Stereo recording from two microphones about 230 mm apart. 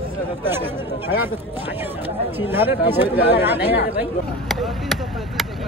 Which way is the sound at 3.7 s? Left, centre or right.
Left.